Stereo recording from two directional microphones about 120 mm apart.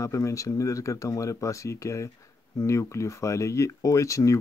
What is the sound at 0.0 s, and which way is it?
Speech, 25° left (ahead or behind).